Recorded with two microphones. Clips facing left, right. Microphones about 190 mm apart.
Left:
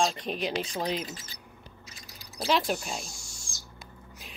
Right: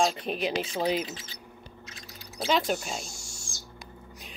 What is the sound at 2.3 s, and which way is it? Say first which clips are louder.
Speech: right 1 dB; centre (ahead or behind).